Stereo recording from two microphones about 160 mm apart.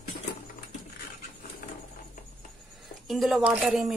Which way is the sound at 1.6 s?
55° left (ahead or behind).